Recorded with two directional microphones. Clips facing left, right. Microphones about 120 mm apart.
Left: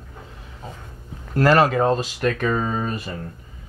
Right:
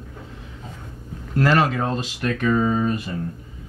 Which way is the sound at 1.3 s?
40° left (ahead or behind).